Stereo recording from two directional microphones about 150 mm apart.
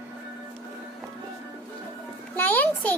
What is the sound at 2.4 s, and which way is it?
Speech, 10° left (ahead or behind).